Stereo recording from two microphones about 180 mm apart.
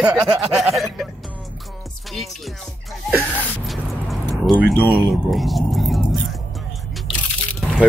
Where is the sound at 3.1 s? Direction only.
10° right (ahead or behind).